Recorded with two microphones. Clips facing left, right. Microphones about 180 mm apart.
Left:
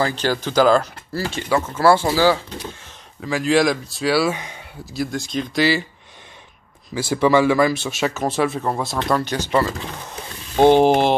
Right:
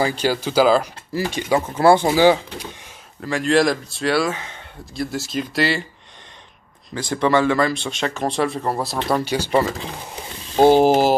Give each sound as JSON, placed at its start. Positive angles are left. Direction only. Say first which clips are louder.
{"t": 0.0, "sound": "speech", "louder": "right 1 dB", "side_deg": -10}
{"t": 3.2, "sound": "speech", "louder": "even", "side_deg": 0}
{"t": 6.9, "sound": "speech", "louder": "left 2 dB", "side_deg": 5}